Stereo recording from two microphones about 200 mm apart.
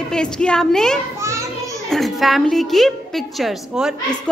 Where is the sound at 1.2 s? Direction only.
15° right (ahead or behind).